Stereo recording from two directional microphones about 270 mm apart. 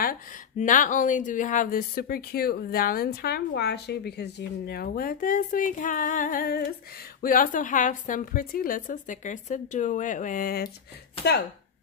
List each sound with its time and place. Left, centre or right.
0.0 s a woman's voice: left